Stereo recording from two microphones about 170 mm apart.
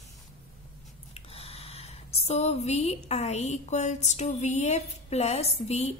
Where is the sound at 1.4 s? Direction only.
35° left (ahead or behind).